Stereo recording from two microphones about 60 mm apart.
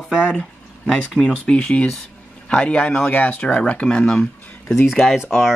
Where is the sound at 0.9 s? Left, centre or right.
Centre.